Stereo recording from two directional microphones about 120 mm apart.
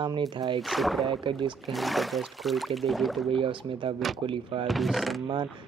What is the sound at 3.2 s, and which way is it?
Speech, 45° right (ahead or behind).